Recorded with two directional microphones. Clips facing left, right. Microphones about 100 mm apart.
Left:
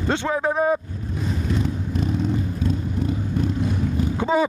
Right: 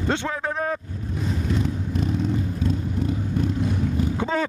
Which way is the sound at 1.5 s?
15° left (ahead or behind).